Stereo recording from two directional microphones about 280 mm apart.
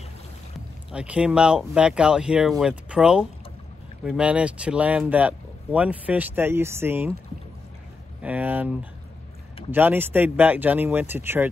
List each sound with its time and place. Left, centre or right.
0.9 s speech: centre
8.2 s speech: centre